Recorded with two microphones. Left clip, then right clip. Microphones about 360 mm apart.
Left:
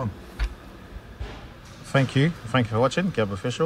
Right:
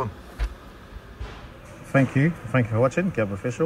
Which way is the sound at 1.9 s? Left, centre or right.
Centre.